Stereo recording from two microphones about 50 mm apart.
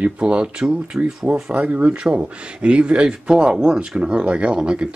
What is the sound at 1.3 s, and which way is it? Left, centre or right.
Speech, right.